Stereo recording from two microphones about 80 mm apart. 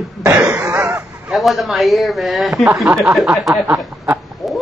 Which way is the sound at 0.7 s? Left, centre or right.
Centre.